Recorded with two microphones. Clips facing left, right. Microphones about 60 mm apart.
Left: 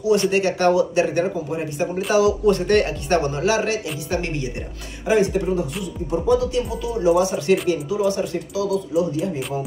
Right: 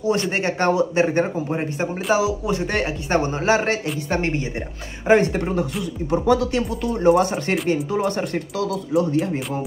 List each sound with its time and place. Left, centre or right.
0.3 s speech: right
2.1 s a man's voice: centre; by 4.5 s right
5.0 s speech: right